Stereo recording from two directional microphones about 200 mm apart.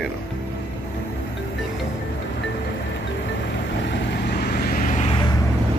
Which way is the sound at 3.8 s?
55° left (ahead or behind).